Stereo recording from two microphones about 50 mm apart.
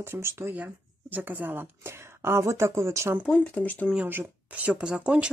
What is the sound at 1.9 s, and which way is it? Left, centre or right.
Speech, right.